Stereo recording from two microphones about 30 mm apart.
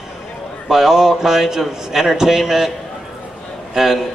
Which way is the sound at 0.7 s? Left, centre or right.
Centre.